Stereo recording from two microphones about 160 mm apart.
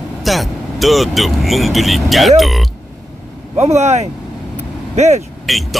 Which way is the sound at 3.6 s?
45° right (ahead or behind).